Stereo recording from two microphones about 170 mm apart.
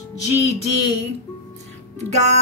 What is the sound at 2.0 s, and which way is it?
Speech, 40° right (ahead or behind).